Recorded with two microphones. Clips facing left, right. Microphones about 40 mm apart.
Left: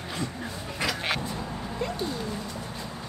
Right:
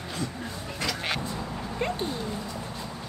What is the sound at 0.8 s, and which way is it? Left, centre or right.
Music, centre.